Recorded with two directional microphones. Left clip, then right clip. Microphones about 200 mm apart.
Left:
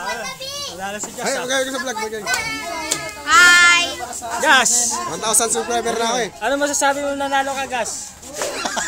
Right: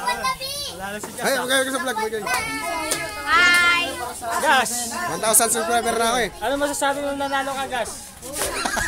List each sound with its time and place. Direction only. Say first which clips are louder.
1.2 s speech: even; 5° right (ahead or behind)
3.3 s a child's voice: left 5 dB; 55° left (ahead or behind)
4.4 s a man's voice: left 5 dB; 40° left (ahead or behind)
5.1 s speech: right 1 dB; centre (ahead or behind)
6.4 s a man's voice: left 4 dB; 35° left (ahead or behind)
8.5 s a sound: right 1 dB; centre (ahead or behind)